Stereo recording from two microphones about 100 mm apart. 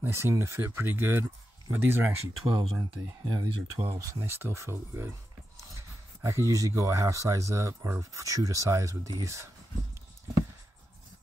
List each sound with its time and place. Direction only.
0.0 s speech: 25° right (ahead or behind)
2.4 s speech: 70° right (ahead or behind)
3.1 s speech: 40° right (ahead or behind)
4.0 s speech: 25° right (ahead or behind)